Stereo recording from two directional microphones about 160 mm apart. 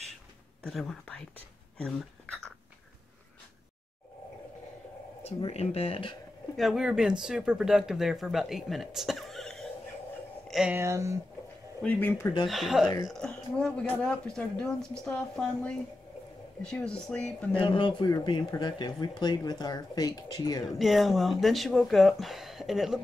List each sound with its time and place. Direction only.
0.7 s speech: centre (ahead or behind)
5.2 s speech: 40° left (ahead or behind)
6.5 s speech: centre (ahead or behind)
10.8 s speech: 20° right (ahead or behind)
11.8 s speech: 10° left (ahead or behind)
12.4 s speech: centre (ahead or behind)
17.6 s speech: 30° left (ahead or behind)
20.7 s speech: centre (ahead or behind)